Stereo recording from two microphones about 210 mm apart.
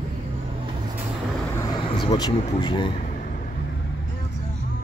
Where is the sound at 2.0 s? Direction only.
20° left (ahead or behind).